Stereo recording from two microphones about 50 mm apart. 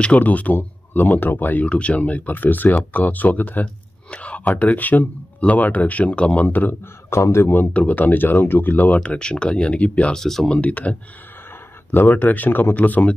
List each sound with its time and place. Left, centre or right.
0.0 s speech: left
1.7 s speech: left
6.4 s speech: left
7.1 s speech: left
7.7 s speech: left
8.9 s speech: left
10.1 s speech: centre
10.5 s speech: left
11.9 s speech: left